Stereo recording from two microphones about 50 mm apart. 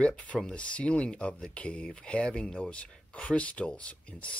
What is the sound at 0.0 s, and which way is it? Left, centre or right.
Speech, left.